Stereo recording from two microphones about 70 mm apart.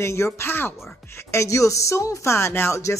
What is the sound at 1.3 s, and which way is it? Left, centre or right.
Speech, left.